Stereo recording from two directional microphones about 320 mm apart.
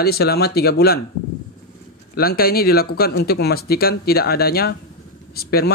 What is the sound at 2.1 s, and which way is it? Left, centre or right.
Speech, left.